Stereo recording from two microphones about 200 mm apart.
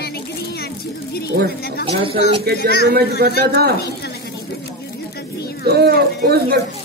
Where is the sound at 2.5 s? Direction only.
55° right (ahead or behind).